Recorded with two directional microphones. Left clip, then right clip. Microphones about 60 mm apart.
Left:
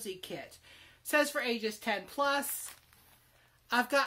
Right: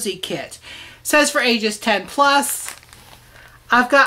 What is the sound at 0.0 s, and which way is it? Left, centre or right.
Speech, right.